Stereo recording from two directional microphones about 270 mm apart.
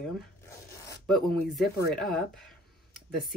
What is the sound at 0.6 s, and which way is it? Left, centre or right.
Zipper, centre.